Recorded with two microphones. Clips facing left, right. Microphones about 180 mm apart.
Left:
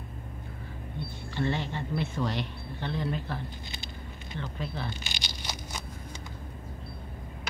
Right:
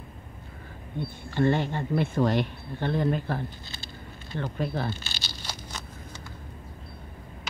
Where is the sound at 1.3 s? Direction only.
50° right (ahead or behind).